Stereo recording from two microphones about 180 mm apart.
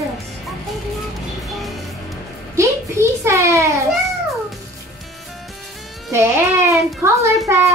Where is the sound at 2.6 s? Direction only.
15° right (ahead or behind).